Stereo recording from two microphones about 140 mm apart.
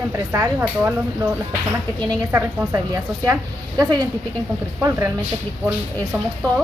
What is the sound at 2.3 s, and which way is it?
A woman's voice, 15° right (ahead or behind).